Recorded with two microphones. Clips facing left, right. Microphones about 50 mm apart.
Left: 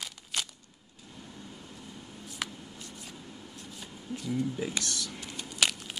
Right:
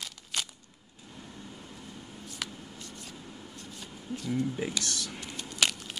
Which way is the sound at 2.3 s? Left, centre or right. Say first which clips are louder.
Left 2 dB; centre.